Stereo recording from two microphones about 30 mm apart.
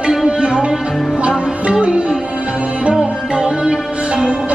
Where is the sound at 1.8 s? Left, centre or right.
Right.